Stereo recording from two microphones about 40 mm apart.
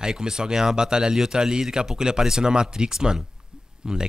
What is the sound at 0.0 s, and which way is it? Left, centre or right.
Speech, centre.